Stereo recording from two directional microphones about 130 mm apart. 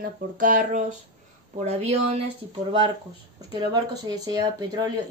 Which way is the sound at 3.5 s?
30° right (ahead or behind).